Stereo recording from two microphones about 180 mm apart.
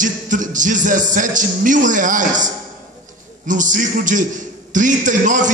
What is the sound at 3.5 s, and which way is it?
A man's voice, 45° right (ahead or behind).